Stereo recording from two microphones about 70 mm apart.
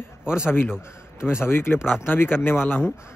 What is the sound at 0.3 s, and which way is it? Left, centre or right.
Speech, left.